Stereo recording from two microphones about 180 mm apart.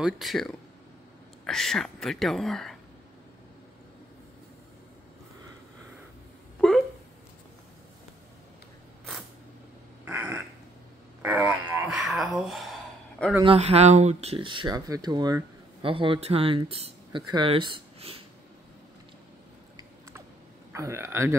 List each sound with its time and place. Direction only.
0.0 s speech: centre (ahead or behind)
10.0 s crow: 10° right (ahead or behind)
11.2 s a sound: 10° right (ahead or behind)
13.2 s speech: 5° left (ahead or behind)
13.6 s speech: 35° right (ahead or behind)
19.8 s a sound: 15° right (ahead or behind)
20.7 s a man's voice: 15° right (ahead or behind)